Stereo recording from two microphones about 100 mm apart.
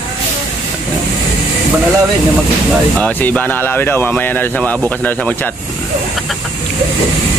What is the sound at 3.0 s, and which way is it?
Speech, 15° left (ahead or behind).